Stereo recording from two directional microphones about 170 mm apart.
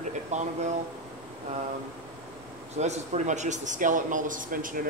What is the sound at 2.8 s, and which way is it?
Speech, 45° right (ahead or behind).